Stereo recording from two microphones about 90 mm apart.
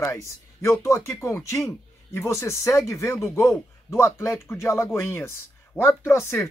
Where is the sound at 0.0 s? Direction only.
30° left (ahead or behind).